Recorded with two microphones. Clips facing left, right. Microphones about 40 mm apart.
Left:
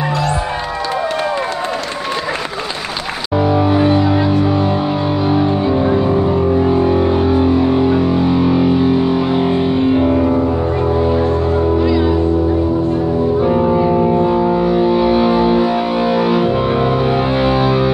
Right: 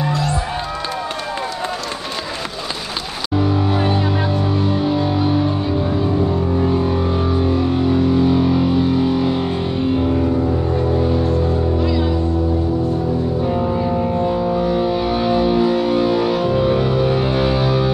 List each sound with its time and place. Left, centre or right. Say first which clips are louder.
4.3 s music: left 5 dB; left
11.8 s music: left 5 dB; centre
13.4 s music: left 6 dB; left